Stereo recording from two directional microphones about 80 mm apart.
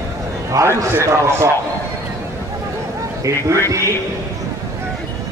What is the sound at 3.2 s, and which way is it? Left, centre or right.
Speech, right.